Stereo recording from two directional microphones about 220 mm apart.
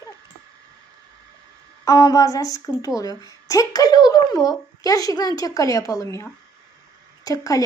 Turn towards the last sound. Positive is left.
turn(degrees=15)  # may be behind; listen again after turning